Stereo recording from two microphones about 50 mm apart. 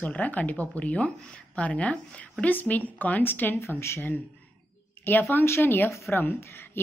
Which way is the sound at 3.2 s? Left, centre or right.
Left.